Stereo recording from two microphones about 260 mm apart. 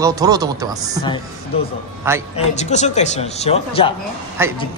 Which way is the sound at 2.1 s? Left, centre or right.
Centre.